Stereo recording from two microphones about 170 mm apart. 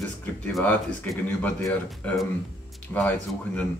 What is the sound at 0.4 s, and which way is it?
Speech, 10° left (ahead or behind).